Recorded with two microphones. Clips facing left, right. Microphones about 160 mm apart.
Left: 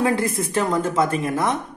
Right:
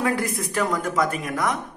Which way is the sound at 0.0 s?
25° left (ahead or behind).